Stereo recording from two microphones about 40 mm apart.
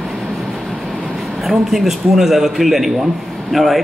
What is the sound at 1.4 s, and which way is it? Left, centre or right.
Speech, centre.